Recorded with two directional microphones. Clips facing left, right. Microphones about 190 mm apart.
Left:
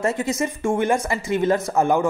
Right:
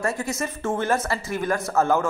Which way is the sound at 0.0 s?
20° left (ahead or behind).